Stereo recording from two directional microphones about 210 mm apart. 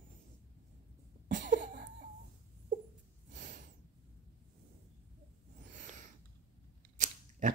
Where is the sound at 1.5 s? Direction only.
40° right (ahead or behind).